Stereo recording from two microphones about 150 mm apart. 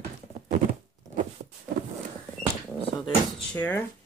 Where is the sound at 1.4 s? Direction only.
50° right (ahead or behind).